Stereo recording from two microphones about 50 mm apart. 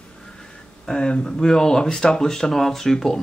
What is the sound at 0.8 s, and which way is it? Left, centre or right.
Speech, centre.